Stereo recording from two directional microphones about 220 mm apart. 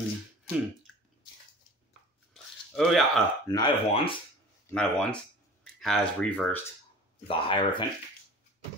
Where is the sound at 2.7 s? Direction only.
Centre (ahead or behind).